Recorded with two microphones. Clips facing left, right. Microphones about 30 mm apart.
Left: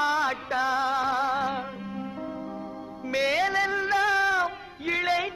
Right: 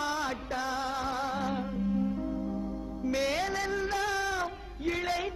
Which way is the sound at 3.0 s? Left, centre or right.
Left.